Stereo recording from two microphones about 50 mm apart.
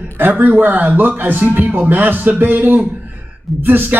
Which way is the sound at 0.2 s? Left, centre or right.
Right.